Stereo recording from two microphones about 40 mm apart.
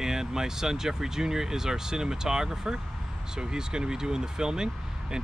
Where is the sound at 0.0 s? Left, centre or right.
Centre.